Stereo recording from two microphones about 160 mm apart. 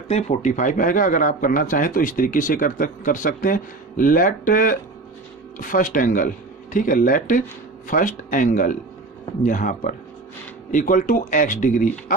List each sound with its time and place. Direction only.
0.1 s speech: 45° left (ahead or behind)